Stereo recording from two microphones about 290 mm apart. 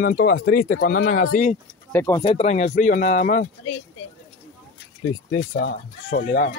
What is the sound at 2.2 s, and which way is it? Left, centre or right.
Speech, left.